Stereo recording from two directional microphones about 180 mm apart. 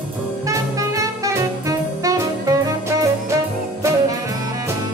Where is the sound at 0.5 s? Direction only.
20° right (ahead or behind).